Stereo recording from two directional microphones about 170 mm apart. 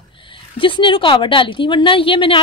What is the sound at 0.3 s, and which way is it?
A woman's voice, 30° left (ahead or behind).